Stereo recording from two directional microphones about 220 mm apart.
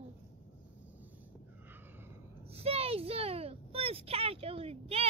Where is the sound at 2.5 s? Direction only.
25° right (ahead or behind).